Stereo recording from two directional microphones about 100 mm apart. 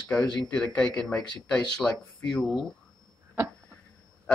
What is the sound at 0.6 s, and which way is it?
Speech, 10° left (ahead or behind).